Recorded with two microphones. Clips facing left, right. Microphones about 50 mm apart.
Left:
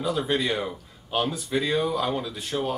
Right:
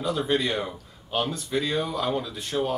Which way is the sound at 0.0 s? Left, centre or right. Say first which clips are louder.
Even; centre.